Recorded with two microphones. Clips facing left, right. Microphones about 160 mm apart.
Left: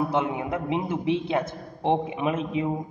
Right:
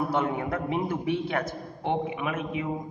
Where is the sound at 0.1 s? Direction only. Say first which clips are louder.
Left 1 dB; 20° left (ahead or behind).